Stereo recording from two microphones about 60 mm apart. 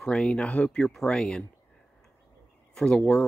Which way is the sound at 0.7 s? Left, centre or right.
Centre.